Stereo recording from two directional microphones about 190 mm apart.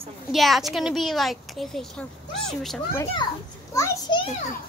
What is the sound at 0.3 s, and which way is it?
Speech, centre (ahead or behind).